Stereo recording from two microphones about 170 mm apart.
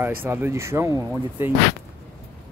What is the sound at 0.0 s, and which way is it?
Speech, 10° right (ahead or behind).